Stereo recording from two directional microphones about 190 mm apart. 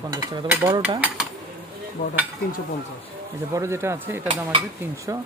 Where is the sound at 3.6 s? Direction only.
15° right (ahead or behind).